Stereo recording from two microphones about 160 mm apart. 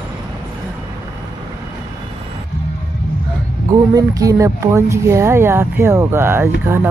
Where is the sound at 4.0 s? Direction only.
20° right (ahead or behind).